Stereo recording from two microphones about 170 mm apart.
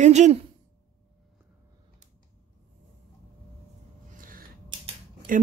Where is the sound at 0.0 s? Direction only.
45° right (ahead or behind).